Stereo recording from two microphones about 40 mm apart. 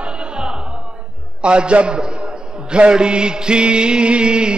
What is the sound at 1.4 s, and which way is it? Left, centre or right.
A man's voice, right.